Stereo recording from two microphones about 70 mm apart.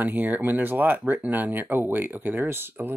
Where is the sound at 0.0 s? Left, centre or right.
Right.